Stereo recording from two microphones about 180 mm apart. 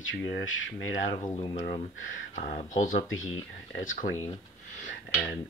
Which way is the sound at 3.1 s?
90° left.